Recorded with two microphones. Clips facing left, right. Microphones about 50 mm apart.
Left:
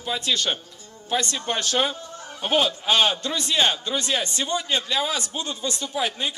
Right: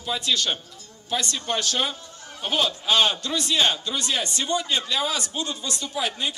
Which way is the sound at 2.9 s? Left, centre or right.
Centre.